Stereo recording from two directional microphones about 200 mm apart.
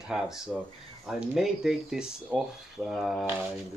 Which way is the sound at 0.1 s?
5° right (ahead or behind).